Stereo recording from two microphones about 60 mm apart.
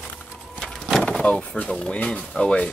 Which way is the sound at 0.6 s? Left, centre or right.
Centre.